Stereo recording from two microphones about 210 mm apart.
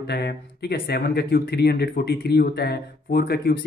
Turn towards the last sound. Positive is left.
turn(degrees=50)  # may be behind; listen again after turning